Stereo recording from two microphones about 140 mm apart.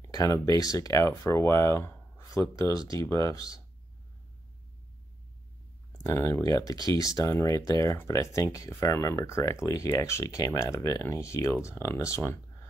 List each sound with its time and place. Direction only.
0.0 s speech: 25° left (ahead or behind)
6.0 s speech: 20° left (ahead or behind)